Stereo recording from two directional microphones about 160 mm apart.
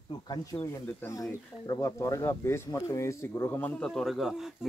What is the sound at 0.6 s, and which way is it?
Speech, 15° left (ahead or behind).